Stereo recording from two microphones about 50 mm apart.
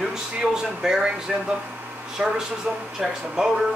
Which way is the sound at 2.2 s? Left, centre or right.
Right.